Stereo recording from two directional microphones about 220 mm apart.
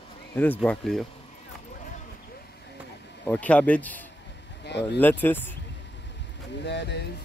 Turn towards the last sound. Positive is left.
turn(degrees=50)  # may be behind; listen again after turning